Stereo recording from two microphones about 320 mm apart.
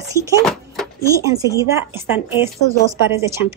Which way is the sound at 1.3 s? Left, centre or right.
Centre.